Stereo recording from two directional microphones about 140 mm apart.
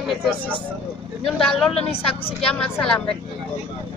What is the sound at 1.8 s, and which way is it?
Speech, 45° left (ahead or behind).